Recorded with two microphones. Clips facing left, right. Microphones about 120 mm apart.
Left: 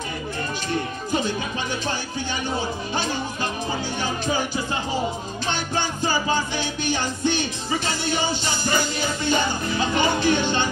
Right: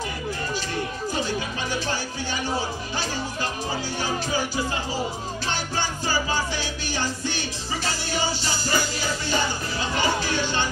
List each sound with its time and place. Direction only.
5.5 s music: 20° left (ahead or behind)